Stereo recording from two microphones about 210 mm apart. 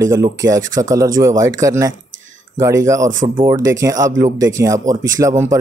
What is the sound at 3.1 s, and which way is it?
Speech, 40° right (ahead or behind).